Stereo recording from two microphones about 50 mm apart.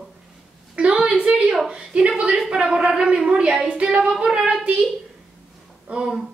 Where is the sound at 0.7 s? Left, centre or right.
Centre.